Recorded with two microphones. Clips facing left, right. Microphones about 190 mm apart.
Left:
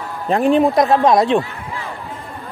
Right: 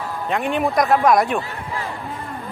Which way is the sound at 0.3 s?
35° left (ahead or behind).